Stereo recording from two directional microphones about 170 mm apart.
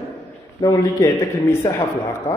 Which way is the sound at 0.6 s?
20° left (ahead or behind).